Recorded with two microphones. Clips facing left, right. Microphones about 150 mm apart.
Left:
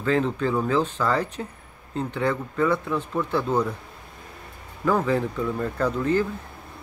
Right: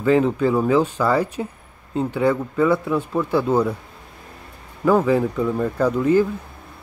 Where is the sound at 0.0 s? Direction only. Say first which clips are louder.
Right 6 dB; 10° right (ahead or behind).